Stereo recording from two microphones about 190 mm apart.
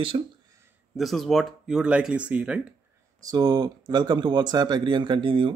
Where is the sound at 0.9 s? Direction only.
Centre (ahead or behind).